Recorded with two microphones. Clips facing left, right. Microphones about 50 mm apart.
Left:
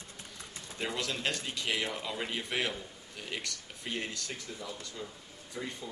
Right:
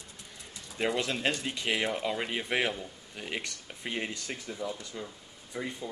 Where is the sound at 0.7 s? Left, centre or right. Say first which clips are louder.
Right 5 dB; right.